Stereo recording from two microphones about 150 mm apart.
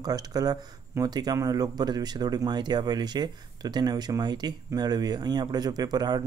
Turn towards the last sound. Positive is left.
turn(degrees=-25)  # may be behind; listen again after turning